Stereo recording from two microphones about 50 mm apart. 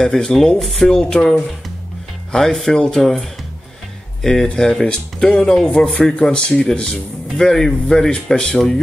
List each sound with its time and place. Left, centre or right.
0.0 s speech: centre
2.3 s speech: centre
6.1 s speech: left